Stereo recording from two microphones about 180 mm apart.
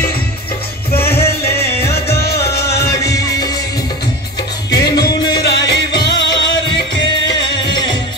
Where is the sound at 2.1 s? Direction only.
65° left (ahead or behind).